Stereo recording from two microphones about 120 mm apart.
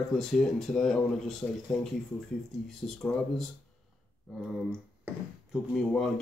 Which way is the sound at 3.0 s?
5° left (ahead or behind).